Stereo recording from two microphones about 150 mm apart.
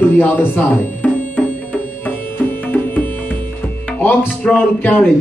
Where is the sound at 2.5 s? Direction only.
10° left (ahead or behind).